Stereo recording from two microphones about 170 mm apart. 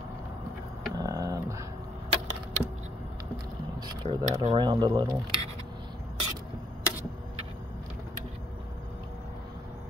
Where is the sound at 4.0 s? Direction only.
25° right (ahead or behind).